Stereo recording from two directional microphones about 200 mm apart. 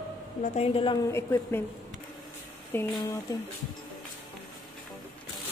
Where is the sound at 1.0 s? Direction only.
15° left (ahead or behind).